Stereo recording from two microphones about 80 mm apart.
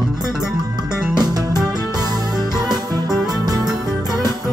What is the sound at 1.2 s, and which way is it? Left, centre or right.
Music, right.